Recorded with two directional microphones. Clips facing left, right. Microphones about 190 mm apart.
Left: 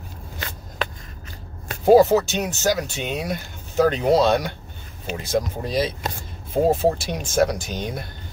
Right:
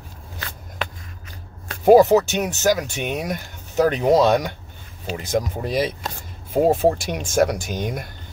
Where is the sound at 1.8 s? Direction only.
15° right (ahead or behind).